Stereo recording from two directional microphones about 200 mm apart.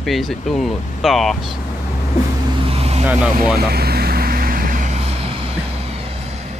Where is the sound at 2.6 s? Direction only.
30° right (ahead or behind).